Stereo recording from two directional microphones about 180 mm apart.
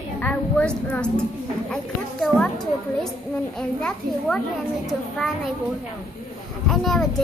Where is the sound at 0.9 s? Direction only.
5° left (ahead or behind).